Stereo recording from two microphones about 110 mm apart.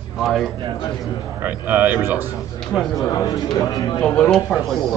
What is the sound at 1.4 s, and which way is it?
Speech, 15° right (ahead or behind).